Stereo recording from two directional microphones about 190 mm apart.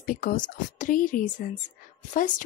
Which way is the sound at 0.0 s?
45° left (ahead or behind).